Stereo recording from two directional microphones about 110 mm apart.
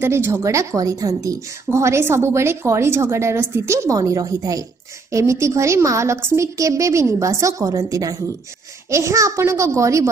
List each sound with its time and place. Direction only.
0.0 s a woman's voice: 20° right (ahead or behind)